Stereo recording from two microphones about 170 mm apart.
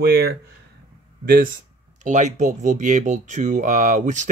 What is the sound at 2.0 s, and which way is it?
Speech, 45° right (ahead or behind).